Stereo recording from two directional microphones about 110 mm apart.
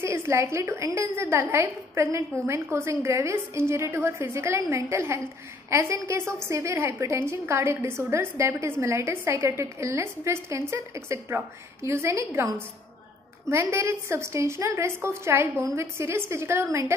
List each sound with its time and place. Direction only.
0.0 s a woman's voice: 25° right (ahead or behind)